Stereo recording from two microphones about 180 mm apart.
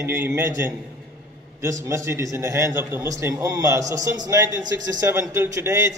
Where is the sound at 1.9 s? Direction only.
15° right (ahead or behind).